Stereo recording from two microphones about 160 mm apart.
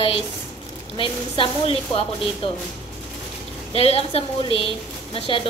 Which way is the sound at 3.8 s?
40° left (ahead or behind).